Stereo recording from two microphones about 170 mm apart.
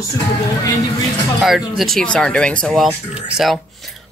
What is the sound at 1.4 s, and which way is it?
A woman's voice, centre (ahead or behind).